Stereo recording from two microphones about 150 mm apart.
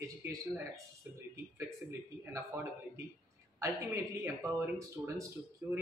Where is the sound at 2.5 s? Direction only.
15° right (ahead or behind).